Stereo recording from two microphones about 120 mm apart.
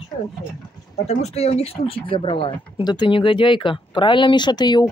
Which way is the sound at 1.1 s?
60° left (ahead or behind).